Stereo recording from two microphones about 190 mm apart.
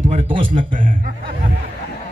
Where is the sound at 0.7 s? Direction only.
45° right (ahead or behind).